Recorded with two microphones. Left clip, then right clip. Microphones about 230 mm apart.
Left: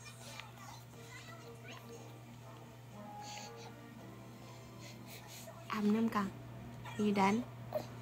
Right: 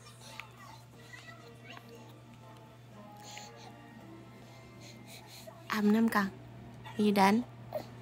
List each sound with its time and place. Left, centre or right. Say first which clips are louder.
5.7 s a woman's voice: right 6 dB; right